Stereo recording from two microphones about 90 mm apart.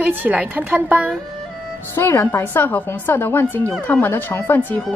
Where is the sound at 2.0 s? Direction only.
30° left (ahead or behind).